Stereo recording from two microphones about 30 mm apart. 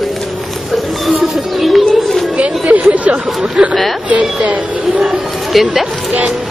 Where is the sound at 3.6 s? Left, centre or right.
Right.